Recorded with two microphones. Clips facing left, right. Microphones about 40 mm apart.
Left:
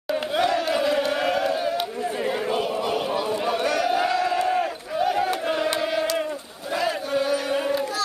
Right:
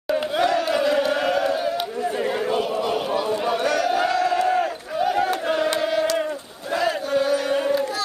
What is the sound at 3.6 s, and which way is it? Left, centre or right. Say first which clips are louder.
Battle cry: right 1 dB; centre.